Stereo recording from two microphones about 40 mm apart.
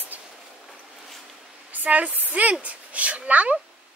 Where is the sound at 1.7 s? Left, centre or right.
Right.